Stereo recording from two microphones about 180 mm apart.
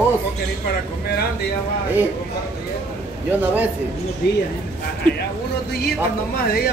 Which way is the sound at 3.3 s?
10° right (ahead or behind).